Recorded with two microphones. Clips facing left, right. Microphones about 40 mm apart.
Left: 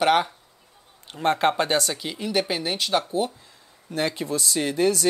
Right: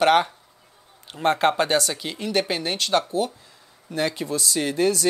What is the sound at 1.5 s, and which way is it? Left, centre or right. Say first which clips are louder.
Speech: right 1 dB; right.